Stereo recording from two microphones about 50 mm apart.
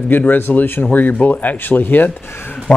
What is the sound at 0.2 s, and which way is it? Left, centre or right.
Speech, left.